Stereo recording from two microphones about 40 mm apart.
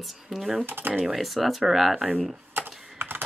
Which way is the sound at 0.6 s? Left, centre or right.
Right.